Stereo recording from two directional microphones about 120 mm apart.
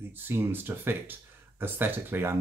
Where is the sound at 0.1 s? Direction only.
20° right (ahead or behind).